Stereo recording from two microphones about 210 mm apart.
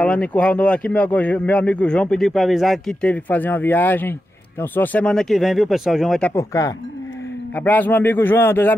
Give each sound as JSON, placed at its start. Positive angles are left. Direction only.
{"t": 0.0, "sound": "speech", "side_deg": 5}
{"t": 6.3, "sound": "a man's voice", "side_deg": 15}